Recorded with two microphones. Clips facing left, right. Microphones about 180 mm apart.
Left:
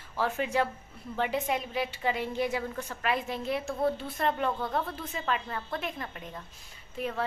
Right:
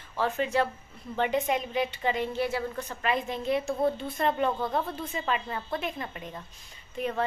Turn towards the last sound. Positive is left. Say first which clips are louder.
# right 3 dB
turn(degrees=5)  # may be behind; listen again after turning